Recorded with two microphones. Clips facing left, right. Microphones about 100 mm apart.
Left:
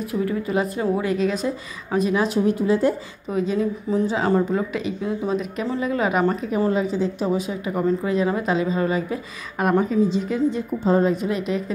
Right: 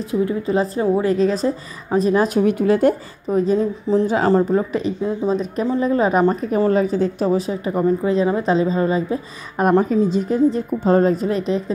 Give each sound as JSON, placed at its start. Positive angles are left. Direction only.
{"t": 0.1, "sound": "speech", "side_deg": -25}
{"t": 2.4, "sound": "speech", "side_deg": -65}
{"t": 3.3, "sound": "speech", "side_deg": -40}
{"t": 6.7, "sound": "speech", "side_deg": -45}
{"t": 9.7, "sound": "speech", "side_deg": -45}